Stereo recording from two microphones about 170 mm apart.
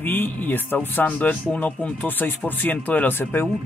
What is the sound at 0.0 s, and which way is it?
Speech, 10° left (ahead or behind).